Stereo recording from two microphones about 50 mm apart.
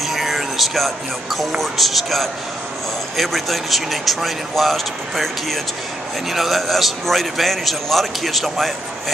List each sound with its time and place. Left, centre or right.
0.0 s speech: centre